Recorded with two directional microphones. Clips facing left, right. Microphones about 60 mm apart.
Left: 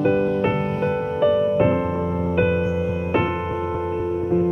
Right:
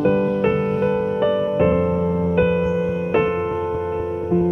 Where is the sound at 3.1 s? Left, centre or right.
Centre.